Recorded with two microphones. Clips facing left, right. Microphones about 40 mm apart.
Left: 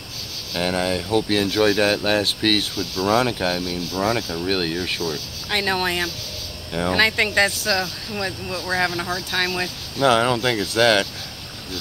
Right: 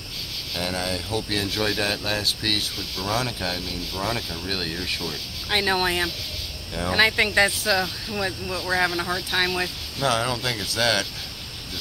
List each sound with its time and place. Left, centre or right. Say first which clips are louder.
0.6 s speech: left 6 dB; left
5.5 s speech: left 1 dB; centre
8.2 s speech: left 1 dB; centre
9.9 s speech: left 6 dB; left